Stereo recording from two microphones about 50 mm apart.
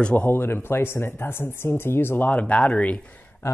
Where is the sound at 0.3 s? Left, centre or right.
Left.